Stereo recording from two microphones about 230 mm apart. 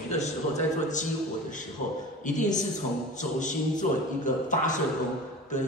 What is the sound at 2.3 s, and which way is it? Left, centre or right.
A man's voice, left.